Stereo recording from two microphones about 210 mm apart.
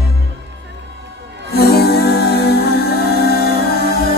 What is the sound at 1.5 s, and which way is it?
Music, 50° left (ahead or behind).